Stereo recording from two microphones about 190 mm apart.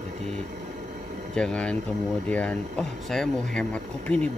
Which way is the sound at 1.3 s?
5° left (ahead or behind).